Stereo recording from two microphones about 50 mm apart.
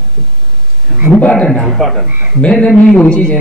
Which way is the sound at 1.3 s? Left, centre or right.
Centre.